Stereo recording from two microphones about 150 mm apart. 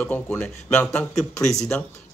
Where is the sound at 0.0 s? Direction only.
15° left (ahead or behind).